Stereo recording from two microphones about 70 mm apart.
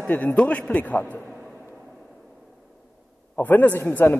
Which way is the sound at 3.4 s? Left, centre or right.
Left.